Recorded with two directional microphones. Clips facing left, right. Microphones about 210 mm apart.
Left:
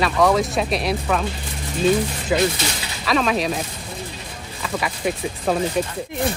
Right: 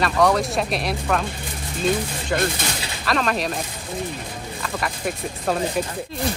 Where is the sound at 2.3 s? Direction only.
5° left (ahead or behind).